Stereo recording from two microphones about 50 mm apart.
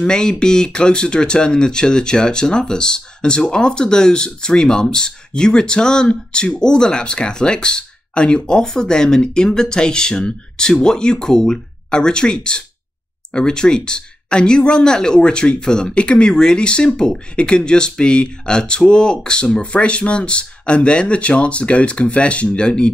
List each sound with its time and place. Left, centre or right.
0.0 s speech: centre